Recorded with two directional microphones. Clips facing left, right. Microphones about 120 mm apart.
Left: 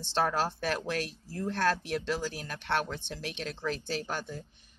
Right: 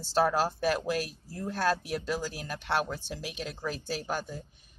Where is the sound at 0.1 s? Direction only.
10° right (ahead or behind).